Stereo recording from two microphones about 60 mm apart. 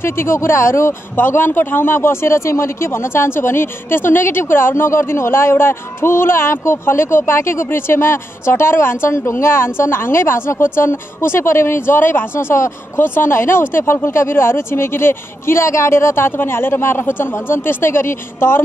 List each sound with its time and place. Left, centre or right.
0.0 s speech: left
1.1 s speech: left